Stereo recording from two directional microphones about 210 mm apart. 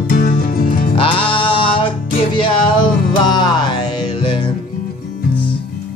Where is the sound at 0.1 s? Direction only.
45° left (ahead or behind).